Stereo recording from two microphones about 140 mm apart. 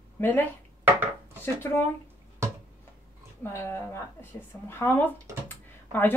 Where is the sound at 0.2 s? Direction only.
15° left (ahead or behind).